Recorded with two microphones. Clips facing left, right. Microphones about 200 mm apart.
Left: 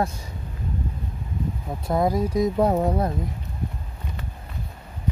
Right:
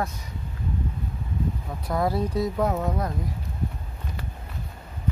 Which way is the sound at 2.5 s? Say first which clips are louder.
Left 5 dB; 30° left (ahead or behind).